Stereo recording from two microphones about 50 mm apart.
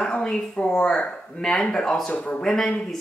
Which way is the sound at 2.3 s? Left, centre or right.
Centre.